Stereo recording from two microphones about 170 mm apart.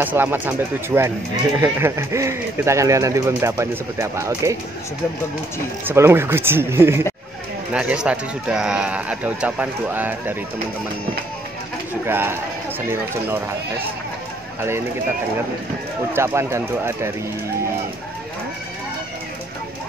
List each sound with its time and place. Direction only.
0.0 s speech: 10° right (ahead or behind)
5.9 s speech: 15° right (ahead or behind)
12.1 s speech: 10° right (ahead or behind)
16.1 s speech: 15° right (ahead or behind)